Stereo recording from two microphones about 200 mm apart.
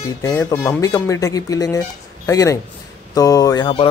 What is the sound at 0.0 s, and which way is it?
Speech, 15° left (ahead or behind).